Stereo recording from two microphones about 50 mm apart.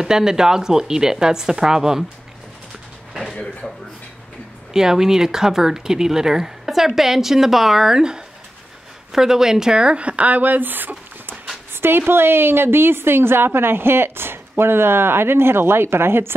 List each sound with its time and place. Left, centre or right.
0.0 s speech: centre
4.7 s speech: centre; by 11.3 s right
11.7 s a sound: right
12.1 s a woman's voice: right